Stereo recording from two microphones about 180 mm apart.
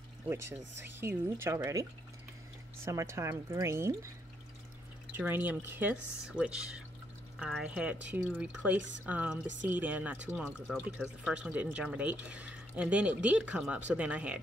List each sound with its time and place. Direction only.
1.0 s speech: 15° right (ahead or behind)
5.1 s speech: 10° right (ahead or behind)